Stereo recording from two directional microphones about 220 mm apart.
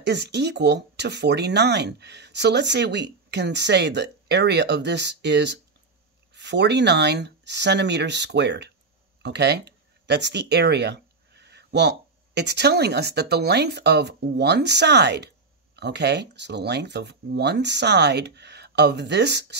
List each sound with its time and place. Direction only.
0.0 s speech: 50° right (ahead or behind)